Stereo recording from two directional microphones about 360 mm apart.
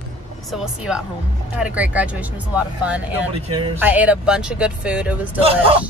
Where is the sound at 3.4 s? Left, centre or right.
Centre.